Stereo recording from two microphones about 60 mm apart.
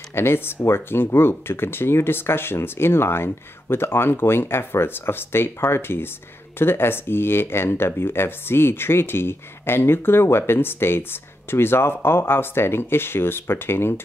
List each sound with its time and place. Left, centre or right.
0.1 s speech: left